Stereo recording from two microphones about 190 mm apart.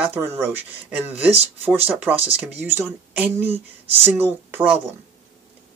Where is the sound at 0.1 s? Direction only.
10° right (ahead or behind).